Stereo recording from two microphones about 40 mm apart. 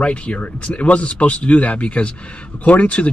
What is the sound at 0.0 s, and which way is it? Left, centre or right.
Speech, left.